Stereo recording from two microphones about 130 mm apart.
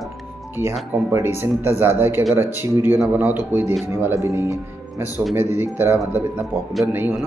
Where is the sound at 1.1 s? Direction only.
20° right (ahead or behind).